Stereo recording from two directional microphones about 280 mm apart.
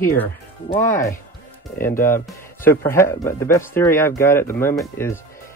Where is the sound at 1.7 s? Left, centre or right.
Left.